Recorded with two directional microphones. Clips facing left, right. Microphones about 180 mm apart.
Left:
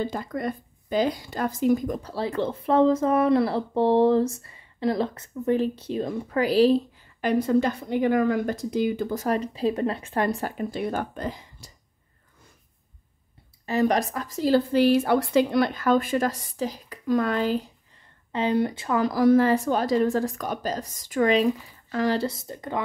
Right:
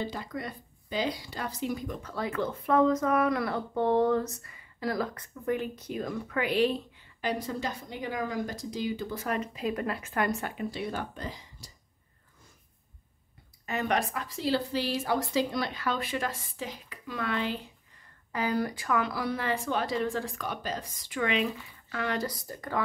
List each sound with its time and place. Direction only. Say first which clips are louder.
0.0 s speech: left 7 dB; 50° left (ahead or behind)
2.1 s speech: left 3 dB; 30° left (ahead or behind)
7.2 s speech: left 11 dB; 55° left (ahead or behind)
13.7 s speech: left 7 dB; 35° left (ahead or behind)
18.3 s speech: left 6 dB; 25° left (ahead or behind)
18.9 s a woman's voice: left 14 dB; 40° left (ahead or behind); by 22.8 s 20° left (ahead or behind)